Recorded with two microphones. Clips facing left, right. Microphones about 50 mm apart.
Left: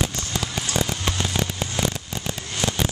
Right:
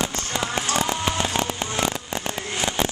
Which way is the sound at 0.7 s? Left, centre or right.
Right.